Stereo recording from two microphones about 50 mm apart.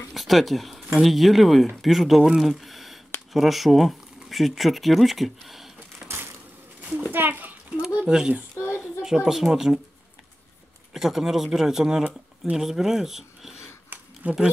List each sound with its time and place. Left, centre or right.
0.1 s a sound: centre
0.9 s speech: centre
6.0 s a sound: right
7.1 s a sound: right
8.1 s a child's voice: centre
8.5 s a child's voice: left
9.0 s speech: centre
10.9 s speech: centre
14.2 s speech: right